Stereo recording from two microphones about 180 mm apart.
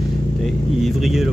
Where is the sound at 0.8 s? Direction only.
Centre (ahead or behind).